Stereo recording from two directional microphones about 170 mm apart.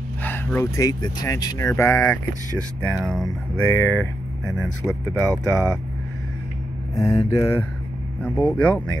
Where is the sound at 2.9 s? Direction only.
Centre (ahead or behind).